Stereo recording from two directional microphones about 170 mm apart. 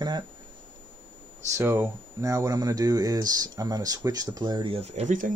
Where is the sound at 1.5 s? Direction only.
15° right (ahead or behind); by 5.3 s 45° right (ahead or behind).